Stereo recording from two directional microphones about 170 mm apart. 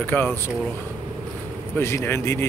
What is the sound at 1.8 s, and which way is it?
Speech, 15° left (ahead or behind).